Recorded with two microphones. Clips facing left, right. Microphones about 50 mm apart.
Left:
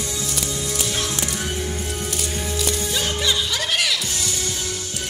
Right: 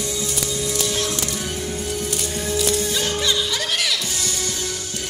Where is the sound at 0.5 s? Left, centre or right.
Centre.